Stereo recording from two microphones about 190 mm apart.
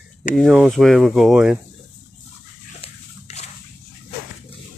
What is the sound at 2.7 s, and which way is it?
Dog, 35° left (ahead or behind).